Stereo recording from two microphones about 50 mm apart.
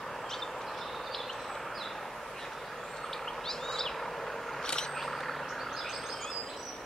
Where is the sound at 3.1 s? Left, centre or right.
Centre.